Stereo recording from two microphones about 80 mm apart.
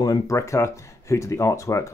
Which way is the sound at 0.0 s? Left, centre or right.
Left.